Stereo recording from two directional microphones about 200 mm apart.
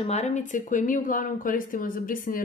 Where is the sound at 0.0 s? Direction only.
35° left (ahead or behind).